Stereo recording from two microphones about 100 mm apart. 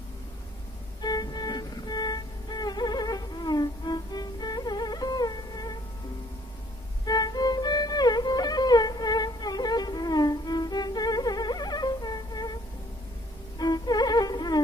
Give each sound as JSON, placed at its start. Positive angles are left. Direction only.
{"t": 1.0, "sound": "music", "side_deg": 40}
{"t": 7.1, "sound": "music", "side_deg": 40}
{"t": 13.6, "sound": "music", "side_deg": 40}